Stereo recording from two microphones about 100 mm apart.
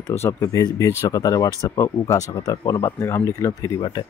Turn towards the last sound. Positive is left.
turn(degrees=30)  # may be behind; listen again after turning